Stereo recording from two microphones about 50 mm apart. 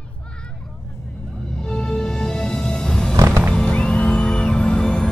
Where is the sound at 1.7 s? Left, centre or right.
Centre.